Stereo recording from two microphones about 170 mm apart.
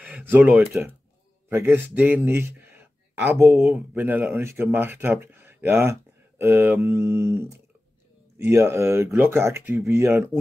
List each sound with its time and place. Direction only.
0.0 s a man's voice: 10° right (ahead or behind)
3.4 s speech: centre (ahead or behind)
3.9 s speech: 10° right (ahead or behind)